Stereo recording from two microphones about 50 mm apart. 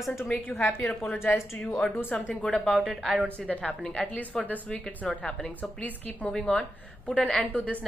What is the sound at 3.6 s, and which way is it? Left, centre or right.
Speech, centre.